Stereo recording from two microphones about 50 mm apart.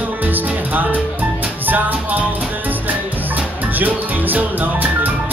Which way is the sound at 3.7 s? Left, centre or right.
Right.